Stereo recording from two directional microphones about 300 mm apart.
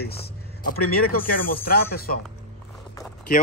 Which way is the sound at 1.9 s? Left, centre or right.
Left.